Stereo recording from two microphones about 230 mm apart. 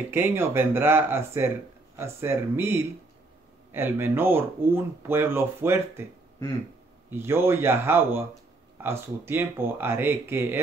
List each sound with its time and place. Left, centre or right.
0.1 s speech: centre
7.1 s speech: centre